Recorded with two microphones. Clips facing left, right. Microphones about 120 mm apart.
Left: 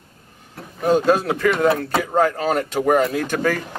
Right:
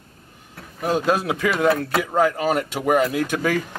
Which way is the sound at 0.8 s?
5° right (ahead or behind).